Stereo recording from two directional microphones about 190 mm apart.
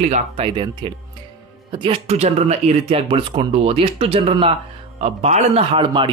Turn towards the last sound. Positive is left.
turn(degrees=-25)  # may be behind; listen again after turning